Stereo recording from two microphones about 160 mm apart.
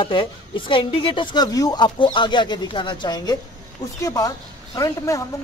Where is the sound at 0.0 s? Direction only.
35° left (ahead or behind).